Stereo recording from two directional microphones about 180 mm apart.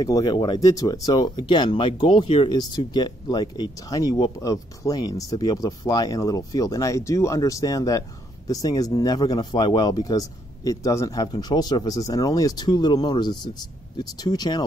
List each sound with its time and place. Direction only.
0.0 s speech: 20° left (ahead or behind)